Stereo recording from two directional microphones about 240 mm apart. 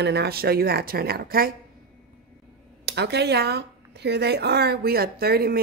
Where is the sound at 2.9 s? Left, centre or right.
Right.